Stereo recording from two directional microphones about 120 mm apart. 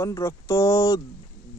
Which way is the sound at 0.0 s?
25° left (ahead or behind).